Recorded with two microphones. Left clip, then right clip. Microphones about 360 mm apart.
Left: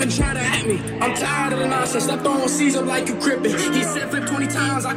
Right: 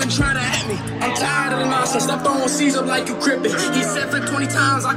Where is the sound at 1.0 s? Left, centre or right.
Right.